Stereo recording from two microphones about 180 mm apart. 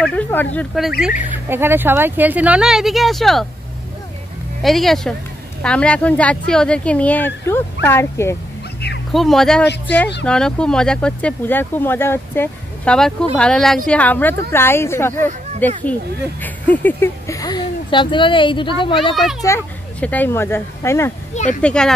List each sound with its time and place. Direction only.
0.0 s speech: 10° left (ahead or behind)
0.6 s speech: centre (ahead or behind)
1.5 s speech: 10° right (ahead or behind)
4.6 s speech: centre (ahead or behind)
9.1 s speech: centre (ahead or behind); by 18.9 s 25° left (ahead or behind)
19.4 s speech: 10° left (ahead or behind)